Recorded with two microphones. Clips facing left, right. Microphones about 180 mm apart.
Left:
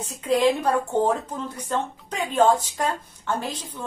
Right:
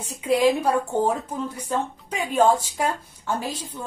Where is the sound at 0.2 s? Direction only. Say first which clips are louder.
Right 1 dB; 10° right (ahead or behind).